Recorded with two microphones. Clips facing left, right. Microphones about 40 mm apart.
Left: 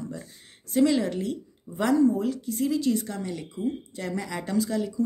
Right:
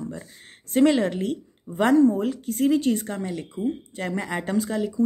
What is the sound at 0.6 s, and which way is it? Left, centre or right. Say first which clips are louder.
Speech: right 3 dB; right.